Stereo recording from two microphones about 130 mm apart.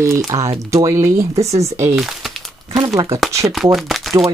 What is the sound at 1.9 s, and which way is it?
Speech, 5° right (ahead or behind).